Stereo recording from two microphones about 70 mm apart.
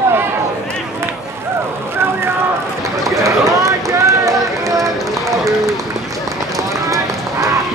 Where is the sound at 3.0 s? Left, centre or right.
Right.